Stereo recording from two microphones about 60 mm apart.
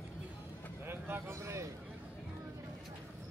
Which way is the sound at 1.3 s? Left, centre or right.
Right.